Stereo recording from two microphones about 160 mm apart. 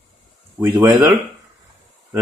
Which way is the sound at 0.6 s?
20° right (ahead or behind).